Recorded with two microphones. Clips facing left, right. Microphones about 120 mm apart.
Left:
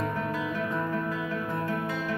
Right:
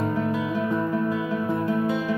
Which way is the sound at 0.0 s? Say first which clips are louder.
Right 5 dB; 20° right (ahead or behind).